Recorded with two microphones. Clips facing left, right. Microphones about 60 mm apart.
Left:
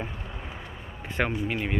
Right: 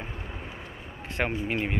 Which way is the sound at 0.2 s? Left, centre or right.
Centre.